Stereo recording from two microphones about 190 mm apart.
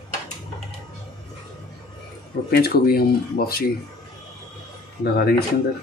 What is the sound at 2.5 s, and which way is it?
Speech, 55° left (ahead or behind).